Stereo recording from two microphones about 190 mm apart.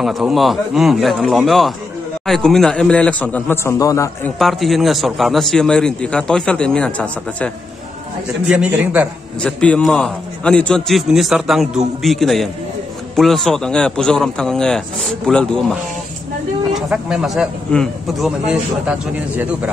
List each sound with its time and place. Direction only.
0.0 s a man's voice: centre (ahead or behind); by 4.3 s 15° left (ahead or behind)
4.4 s a man's voice: centre (ahead or behind)
8.5 s a man's voice: 5° right (ahead or behind)
9.4 s a man's voice: 5° left (ahead or behind)
16.9 s a man's voice: 5° right (ahead or behind)